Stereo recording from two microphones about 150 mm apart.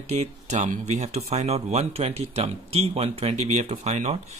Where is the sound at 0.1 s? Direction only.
50° right (ahead or behind).